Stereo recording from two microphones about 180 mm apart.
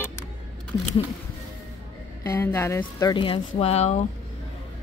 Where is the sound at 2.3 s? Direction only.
15° left (ahead or behind); by 4.0 s 35° left (ahead or behind).